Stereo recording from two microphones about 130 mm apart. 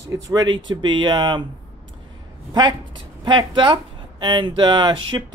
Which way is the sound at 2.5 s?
35° right (ahead or behind).